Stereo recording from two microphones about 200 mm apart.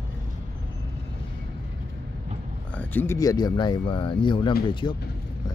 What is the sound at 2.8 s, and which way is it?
Speech, 10° left (ahead or behind).